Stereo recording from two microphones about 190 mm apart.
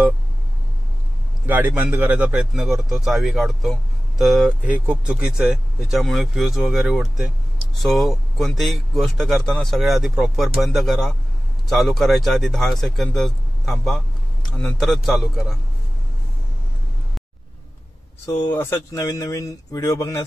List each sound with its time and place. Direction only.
1.4 s a man's voice: 10° right (ahead or behind)
18.2 s speech: 15° left (ahead or behind)